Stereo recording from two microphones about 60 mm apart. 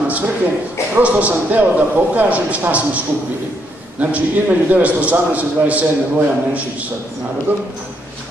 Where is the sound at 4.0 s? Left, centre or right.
Right.